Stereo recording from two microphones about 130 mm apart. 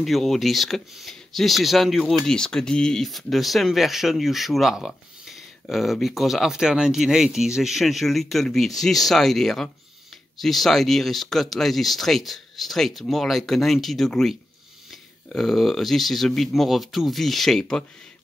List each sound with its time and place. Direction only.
0.0 s speech: centre (ahead or behind)